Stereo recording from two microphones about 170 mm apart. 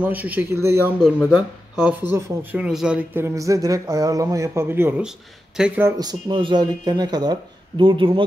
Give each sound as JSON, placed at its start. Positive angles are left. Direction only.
{"t": 0.0, "sound": "speech", "side_deg": -10}
{"t": 2.6, "sound": "speech", "side_deg": -5}
{"t": 5.9, "sound": "speech", "side_deg": -25}